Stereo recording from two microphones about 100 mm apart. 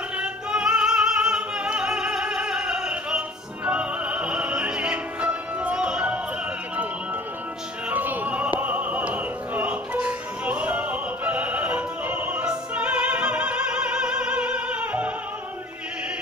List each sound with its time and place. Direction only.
0.2 s singing: 10° right (ahead or behind)
7.9 s opera: 15° right (ahead or behind)